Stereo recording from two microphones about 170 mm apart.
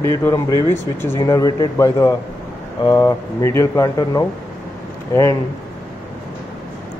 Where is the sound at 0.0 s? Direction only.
15° left (ahead or behind).